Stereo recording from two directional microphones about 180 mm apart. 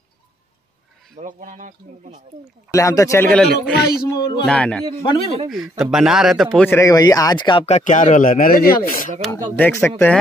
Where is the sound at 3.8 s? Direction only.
55° left (ahead or behind).